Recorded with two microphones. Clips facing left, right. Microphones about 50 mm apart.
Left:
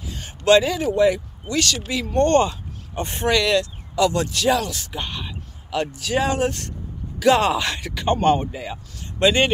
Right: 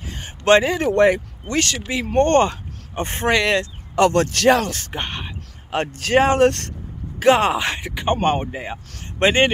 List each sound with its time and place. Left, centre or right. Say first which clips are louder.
0.0 s a sound: right 1 dB; right
0.7 s speech: right 2 dB; right
1.5 s speech: right 1 dB; right
7.2 s speech: right 1 dB; right